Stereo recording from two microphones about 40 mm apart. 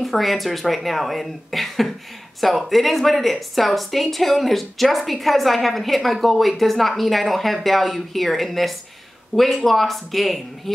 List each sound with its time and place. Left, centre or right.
0.0 s speech: centre